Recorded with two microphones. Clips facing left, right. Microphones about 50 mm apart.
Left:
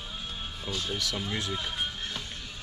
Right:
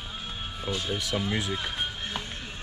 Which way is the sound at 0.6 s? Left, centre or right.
Centre.